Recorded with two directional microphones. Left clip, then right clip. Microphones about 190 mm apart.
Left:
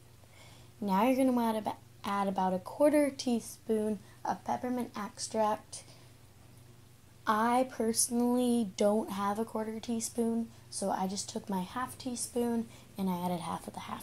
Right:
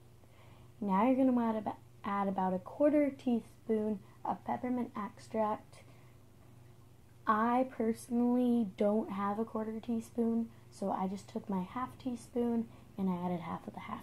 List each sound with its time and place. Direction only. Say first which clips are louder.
0.7 s a woman's voice: left 2 dB; 20° left (ahead or behind)
7.2 s a woman's voice: left 2 dB; 15° left (ahead or behind)